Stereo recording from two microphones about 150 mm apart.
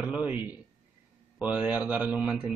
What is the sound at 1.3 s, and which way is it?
Speech, 5° right (ahead or behind).